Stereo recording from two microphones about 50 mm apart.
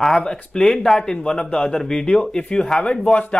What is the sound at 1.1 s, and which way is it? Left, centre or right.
A man's voice, left.